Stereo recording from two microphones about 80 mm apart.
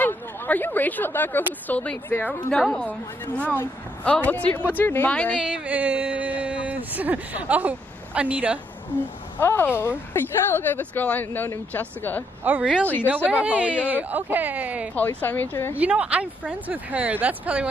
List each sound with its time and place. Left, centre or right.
0.0 s speech: left
2.5 s a woman's voice: centre
3.3 s speech: left
5.4 s speech: centre
9.4 s speech: left
12.4 s speech: centre
12.8 s speech: left
13.3 s speech: centre
15.2 s speech: left
15.7 s speech: centre